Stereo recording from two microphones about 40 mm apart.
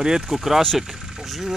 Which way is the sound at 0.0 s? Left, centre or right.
Centre.